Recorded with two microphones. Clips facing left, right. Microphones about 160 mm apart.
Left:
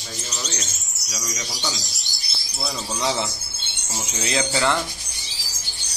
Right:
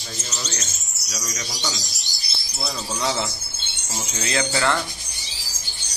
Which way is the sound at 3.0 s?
15° left (ahead or behind).